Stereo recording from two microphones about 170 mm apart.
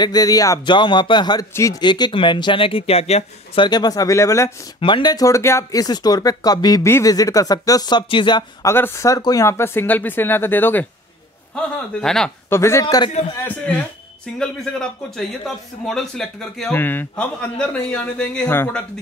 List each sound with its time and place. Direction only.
0.0 s speech: 20° left (ahead or behind)
4.7 s speech: 30° left (ahead or behind)
8.7 s a man's voice: 15° left (ahead or behind)
12.4 s a man's voice: 15° left (ahead or behind)
12.8 s speech: 25° left (ahead or behind)
13.4 s a man's voice: 10° left (ahead or behind)